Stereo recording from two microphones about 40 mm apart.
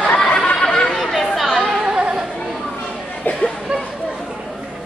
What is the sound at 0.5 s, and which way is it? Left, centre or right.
Chatter, centre.